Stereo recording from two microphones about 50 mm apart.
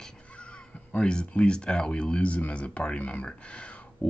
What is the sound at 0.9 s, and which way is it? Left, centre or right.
Speech, left.